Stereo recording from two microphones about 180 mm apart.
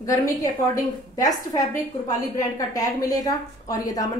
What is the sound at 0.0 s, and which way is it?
A woman's voice, 20° left (ahead or behind).